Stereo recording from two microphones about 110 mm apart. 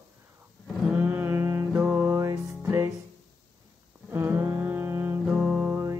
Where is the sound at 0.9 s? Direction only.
15° right (ahead or behind).